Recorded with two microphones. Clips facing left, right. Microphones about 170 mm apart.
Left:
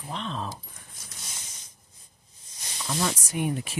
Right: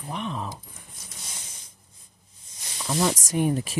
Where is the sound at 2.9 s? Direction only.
30° right (ahead or behind).